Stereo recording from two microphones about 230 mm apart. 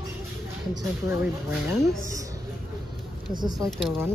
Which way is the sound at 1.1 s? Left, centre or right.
Centre.